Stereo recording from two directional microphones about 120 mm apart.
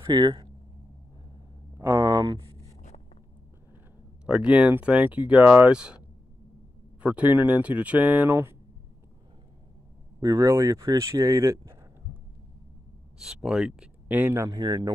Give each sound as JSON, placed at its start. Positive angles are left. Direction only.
{"t": 0.0, "sound": "speech", "side_deg": -40}
{"t": 1.9, "sound": "a sound", "side_deg": -40}
{"t": 4.3, "sound": "speech", "side_deg": -10}
{"t": 10.2, "sound": "speech", "side_deg": -30}
{"t": 13.2, "sound": "speech", "side_deg": -5}